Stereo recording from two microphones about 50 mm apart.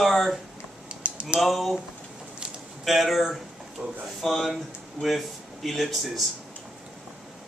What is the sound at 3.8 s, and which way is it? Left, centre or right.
Speech, centre.